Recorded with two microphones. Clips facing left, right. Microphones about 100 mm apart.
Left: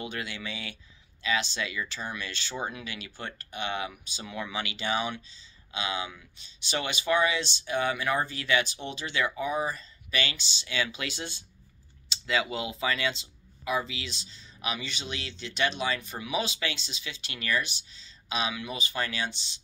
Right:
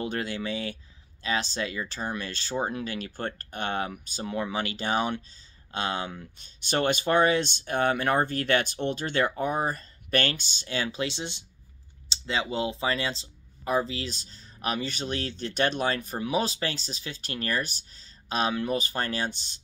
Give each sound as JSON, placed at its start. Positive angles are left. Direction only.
{"t": 0.0, "sound": "speech", "side_deg": -40}